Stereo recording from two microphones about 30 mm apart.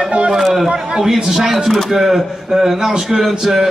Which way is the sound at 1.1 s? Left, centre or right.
Centre.